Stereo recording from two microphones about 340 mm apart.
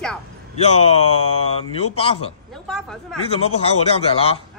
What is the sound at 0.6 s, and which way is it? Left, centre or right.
A man's voice, centre.